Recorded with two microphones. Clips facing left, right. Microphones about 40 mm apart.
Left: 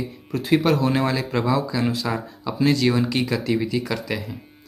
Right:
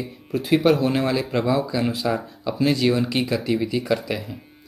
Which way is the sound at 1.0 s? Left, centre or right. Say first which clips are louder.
Right 1 dB; centre.